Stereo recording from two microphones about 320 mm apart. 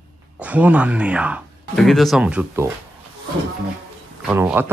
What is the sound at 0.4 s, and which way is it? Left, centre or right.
Speech, centre.